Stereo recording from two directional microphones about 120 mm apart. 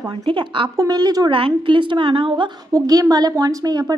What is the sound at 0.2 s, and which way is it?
A woman's voice, 45° right (ahead or behind).